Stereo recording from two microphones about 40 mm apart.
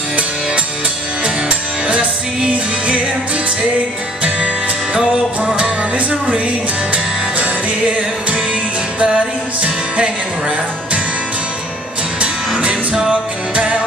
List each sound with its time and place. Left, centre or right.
1.2 s music: right
4.9 s music: right
6.9 s music: right
12.6 s music: centre
13.1 s music: right